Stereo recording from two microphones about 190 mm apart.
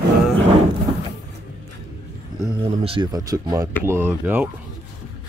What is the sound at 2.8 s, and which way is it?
Speech, 25° right (ahead or behind).